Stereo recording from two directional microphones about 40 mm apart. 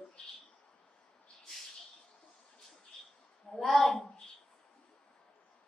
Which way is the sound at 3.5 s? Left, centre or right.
Centre.